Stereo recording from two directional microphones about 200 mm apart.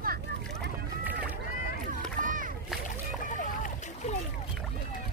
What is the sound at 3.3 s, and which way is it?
Splash, 40° left (ahead or behind).